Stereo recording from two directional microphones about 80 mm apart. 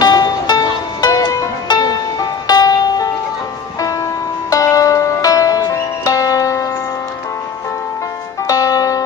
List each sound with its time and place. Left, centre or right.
0.0 s music: left
4.5 s music: left
8.5 s music: left